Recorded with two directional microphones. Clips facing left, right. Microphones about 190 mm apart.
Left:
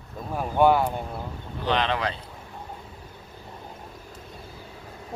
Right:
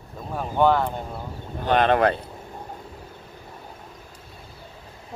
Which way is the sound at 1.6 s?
50° right (ahead or behind).